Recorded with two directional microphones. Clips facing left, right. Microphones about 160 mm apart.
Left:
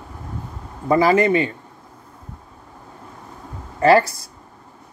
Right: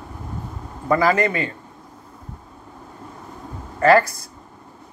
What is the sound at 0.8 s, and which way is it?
Speech, 25° left (ahead or behind).